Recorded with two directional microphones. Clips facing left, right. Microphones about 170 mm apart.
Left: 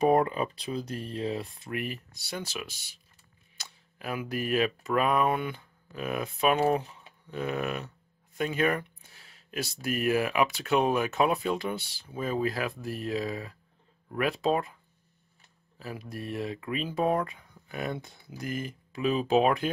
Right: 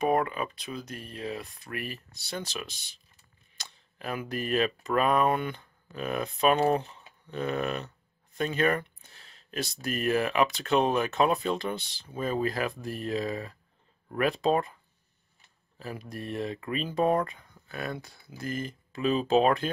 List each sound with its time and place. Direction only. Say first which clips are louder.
0.0 s speech: left 3 dB; 30° left (ahead or behind); by 14.8 s 5° left (ahead or behind)
15.8 s speech: even; 5° left (ahead or behind)
17.6 s speech: left 2 dB; 20° left (ahead or behind)